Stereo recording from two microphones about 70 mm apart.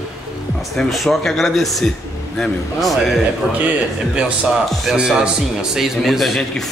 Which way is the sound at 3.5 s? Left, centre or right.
Centre.